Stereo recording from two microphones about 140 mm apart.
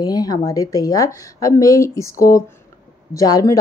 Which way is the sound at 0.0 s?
25° left (ahead or behind).